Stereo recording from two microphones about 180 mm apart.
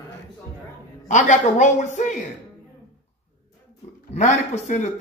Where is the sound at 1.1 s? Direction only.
40° left (ahead or behind).